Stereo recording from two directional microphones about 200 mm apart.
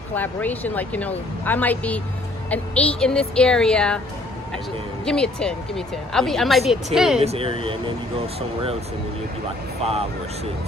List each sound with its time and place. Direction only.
0.1 s a woman's voice: 10° left (ahead or behind)
5.0 s speech: 5° left (ahead or behind)
7.2 s speech: 30° right (ahead or behind)